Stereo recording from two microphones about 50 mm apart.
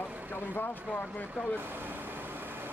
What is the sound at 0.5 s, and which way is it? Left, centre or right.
Speech, left.